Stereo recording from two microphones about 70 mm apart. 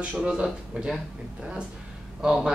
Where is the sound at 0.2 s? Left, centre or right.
Centre.